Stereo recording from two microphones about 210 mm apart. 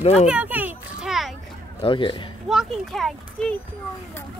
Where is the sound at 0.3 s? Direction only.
5° right (ahead or behind).